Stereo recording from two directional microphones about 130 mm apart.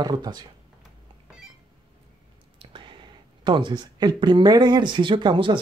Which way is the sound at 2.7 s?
40° right (ahead or behind).